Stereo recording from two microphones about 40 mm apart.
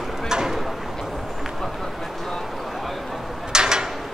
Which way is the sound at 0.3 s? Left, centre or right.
Centre.